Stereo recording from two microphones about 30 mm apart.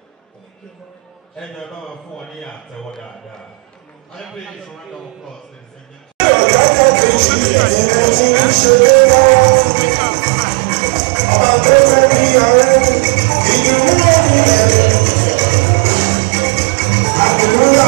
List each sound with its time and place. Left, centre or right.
6.1 s a sound: left
9.1 s speech: left
11.2 s music: left